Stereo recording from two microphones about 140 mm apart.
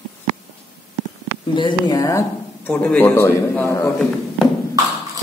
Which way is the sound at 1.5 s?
30° left (ahead or behind).